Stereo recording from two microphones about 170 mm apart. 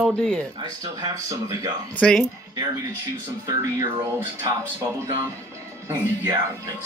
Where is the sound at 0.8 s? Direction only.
20° right (ahead or behind).